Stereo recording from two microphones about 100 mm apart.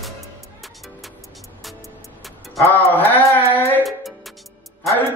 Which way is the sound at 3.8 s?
Centre (ahead or behind).